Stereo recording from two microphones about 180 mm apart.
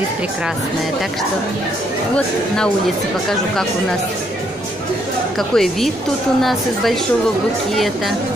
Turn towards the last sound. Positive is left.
turn(degrees=0)  # may be behind; listen again after turning